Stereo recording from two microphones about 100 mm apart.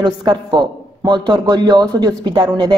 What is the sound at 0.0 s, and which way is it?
A man's voice, 50° right (ahead or behind).